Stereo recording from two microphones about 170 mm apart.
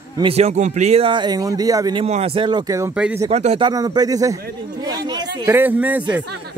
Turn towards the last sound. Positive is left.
turn(degrees=-10)  # may be behind; listen again after turning